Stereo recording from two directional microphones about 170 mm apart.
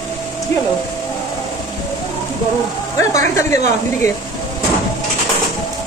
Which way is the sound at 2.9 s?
20° left (ahead or behind).